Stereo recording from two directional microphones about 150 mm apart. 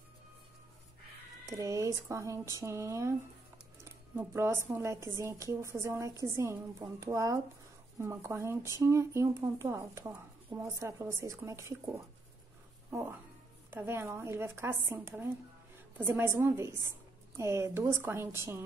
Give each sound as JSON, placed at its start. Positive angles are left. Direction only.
{"t": 1.6, "sound": "a woman's voice", "side_deg": -20}